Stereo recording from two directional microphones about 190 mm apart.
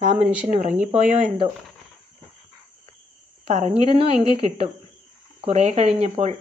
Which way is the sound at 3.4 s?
35° right (ahead or behind).